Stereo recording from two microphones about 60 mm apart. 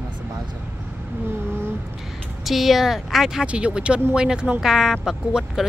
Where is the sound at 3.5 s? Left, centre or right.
Centre.